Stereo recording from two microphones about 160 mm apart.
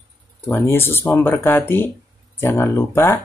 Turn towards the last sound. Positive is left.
turn(degrees=15)  # may be behind; listen again after turning